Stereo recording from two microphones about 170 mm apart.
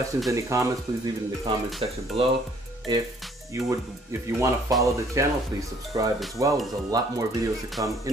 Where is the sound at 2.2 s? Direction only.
35° right (ahead or behind).